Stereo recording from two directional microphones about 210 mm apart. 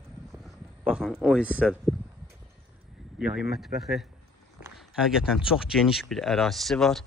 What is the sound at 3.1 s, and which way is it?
Speech, 5° right (ahead or behind).